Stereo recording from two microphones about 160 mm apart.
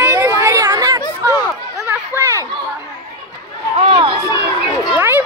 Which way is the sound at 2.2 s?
20° right (ahead or behind).